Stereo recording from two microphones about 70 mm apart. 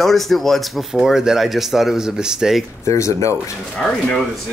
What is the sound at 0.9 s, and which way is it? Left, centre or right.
Speech, centre.